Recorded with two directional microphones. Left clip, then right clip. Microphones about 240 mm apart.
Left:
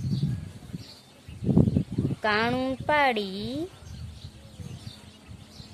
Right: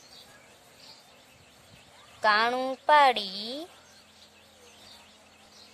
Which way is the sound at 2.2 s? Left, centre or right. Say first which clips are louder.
Right 2 dB; centre.